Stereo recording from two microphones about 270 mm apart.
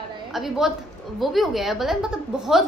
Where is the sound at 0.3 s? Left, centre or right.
Centre.